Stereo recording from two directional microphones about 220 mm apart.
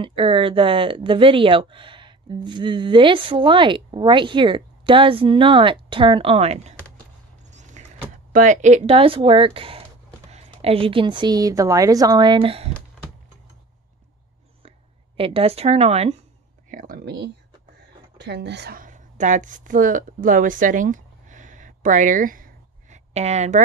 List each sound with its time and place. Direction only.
0.0 s speech: 25° right (ahead or behind)
7.4 s vehicle: 30° right (ahead or behind)
8.3 s speech: 35° right (ahead or behind)
15.1 s speech: 25° right (ahead or behind)
16.7 s a woman's voice: 40° right (ahead or behind)